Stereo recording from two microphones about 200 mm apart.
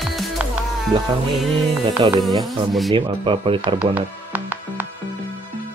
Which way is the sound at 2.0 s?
20° right (ahead or behind).